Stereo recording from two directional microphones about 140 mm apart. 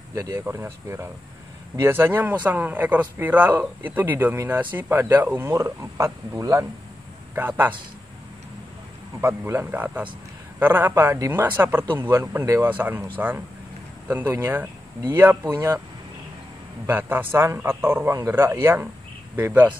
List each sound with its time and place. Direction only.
0.1 s speech: 25° right (ahead or behind)
9.2 s speech: 15° right (ahead or behind)
14.0 s speech: 15° right (ahead or behind)
16.8 s speech: 15° right (ahead or behind)